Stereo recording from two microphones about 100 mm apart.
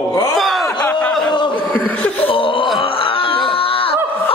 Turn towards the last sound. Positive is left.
turn(degrees=65)  # may be behind; listen again after turning